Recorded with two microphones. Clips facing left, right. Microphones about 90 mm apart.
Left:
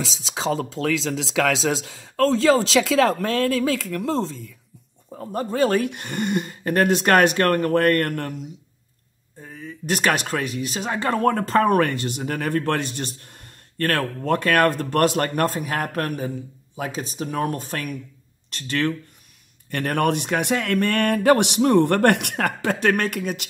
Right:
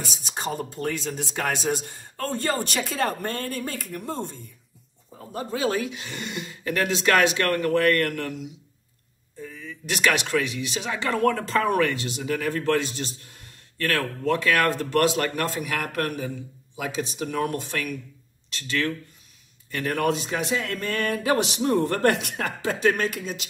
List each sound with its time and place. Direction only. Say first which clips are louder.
0.0 s speech: left 5 dB; 90° left
5.2 s speech: left 5 dB; 50° left (ahead or behind)